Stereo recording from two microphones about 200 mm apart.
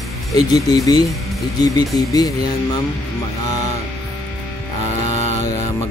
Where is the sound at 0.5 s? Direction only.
20° left (ahead or behind).